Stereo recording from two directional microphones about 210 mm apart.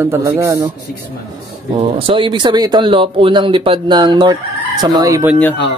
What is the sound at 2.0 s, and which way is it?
Speech, 25° right (ahead or behind).